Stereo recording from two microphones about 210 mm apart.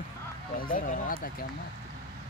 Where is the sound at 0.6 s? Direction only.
40° left (ahead or behind).